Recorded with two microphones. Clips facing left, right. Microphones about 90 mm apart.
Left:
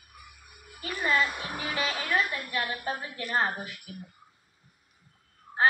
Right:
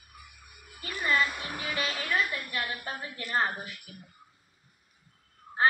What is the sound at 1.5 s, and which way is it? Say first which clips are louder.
A woman's voice: left 2 dB; 10° left (ahead or behind).